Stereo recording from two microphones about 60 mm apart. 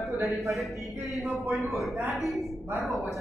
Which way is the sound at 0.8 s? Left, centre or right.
Centre.